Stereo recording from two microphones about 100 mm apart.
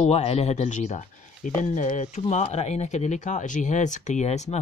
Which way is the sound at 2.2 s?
85° left.